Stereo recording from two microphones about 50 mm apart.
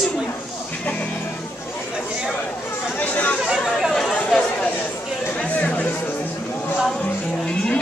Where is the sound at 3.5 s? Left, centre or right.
Centre.